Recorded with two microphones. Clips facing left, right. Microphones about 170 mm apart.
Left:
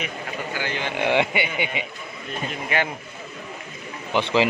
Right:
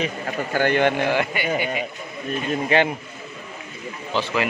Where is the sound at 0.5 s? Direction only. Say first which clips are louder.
Right 12 dB; 55° right (ahead or behind).